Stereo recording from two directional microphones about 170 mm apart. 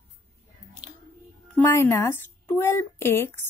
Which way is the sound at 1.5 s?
15° left (ahead or behind).